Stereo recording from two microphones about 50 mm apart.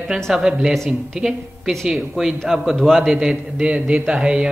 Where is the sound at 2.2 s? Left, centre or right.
Centre.